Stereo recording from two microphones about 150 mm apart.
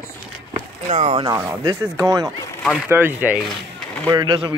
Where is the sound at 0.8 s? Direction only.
45° right (ahead or behind).